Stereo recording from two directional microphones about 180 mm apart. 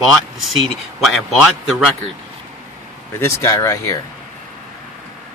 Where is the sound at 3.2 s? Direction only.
15° left (ahead or behind).